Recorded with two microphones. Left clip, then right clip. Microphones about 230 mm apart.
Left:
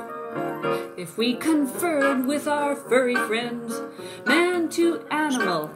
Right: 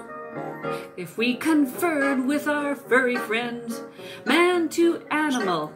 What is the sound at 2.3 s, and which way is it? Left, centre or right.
Music, centre.